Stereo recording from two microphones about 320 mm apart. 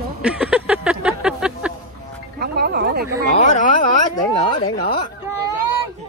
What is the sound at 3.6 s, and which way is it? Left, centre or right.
Speech, left.